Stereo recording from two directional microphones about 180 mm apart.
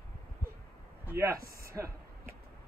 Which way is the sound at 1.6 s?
15° right (ahead or behind).